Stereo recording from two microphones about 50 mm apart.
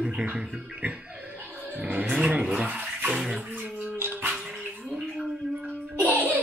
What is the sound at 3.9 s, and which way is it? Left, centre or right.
Dog, right.